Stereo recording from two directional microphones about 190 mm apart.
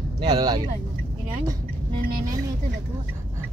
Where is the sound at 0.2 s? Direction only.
20° right (ahead or behind).